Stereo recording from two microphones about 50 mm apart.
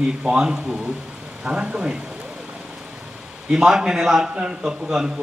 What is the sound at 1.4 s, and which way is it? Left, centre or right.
Speech, right.